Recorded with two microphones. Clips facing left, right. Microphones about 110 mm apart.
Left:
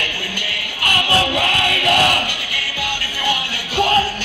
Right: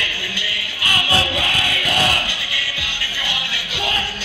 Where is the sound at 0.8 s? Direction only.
55° left (ahead or behind).